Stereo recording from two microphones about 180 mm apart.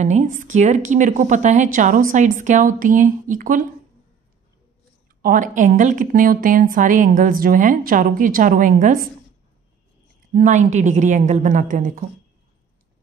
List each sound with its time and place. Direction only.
0.0 s a woman's voice: 40° right (ahead or behind)
5.2 s a woman's voice: 45° right (ahead or behind)
10.3 s a woman's voice: 45° right (ahead or behind)